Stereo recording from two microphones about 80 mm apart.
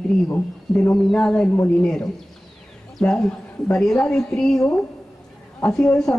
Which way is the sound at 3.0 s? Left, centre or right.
Centre.